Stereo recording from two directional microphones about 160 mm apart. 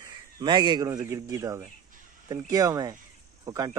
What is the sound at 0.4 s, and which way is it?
Speech, 25° right (ahead or behind).